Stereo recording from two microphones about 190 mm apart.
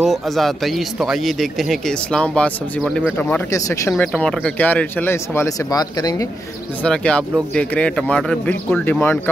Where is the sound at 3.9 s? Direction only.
5° left (ahead or behind); by 6.3 s 20° left (ahead or behind).